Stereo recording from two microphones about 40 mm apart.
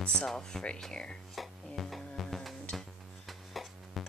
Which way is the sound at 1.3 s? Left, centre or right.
Centre.